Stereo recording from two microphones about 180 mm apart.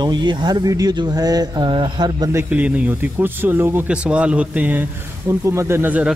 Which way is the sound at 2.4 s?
10° right (ahead or behind).